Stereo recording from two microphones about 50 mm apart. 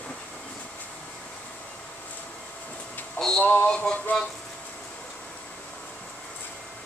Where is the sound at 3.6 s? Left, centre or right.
Centre.